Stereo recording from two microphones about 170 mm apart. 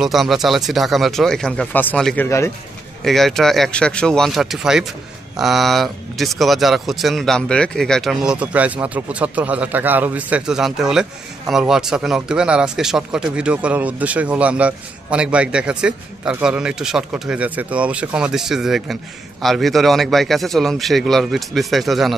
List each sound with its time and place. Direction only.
0.0 s a man's voice: centre (ahead or behind); by 2.5 s 15° left (ahead or behind)
3.0 s speech: centre (ahead or behind)